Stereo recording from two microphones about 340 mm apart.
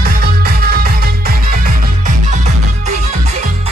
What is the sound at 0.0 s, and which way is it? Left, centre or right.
Music, right.